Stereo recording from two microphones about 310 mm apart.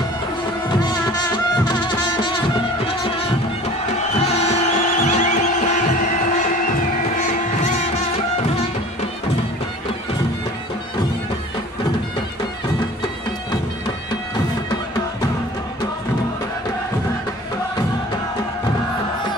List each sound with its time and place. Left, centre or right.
0.7 s music: centre
3.9 s music: left